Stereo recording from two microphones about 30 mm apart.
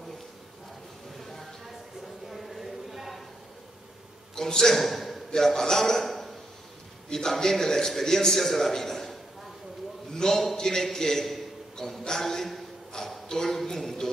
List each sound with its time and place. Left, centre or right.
1.1 s a sound: centre
4.4 s a man's voice: centre
4.7 s a man's voice: centre
5.3 s a man's voice: centre
7.1 s a man's voice: centre
10.1 s a man's voice: centre
12.2 s a sound: centre
13.6 s a man's voice: centre